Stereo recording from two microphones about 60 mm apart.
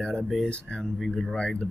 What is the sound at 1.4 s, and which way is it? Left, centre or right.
Speech, centre.